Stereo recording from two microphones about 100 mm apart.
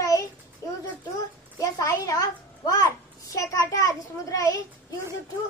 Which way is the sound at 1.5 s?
35° left (ahead or behind).